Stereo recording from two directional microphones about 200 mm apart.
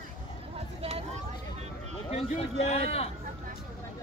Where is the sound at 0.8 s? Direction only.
35° right (ahead or behind).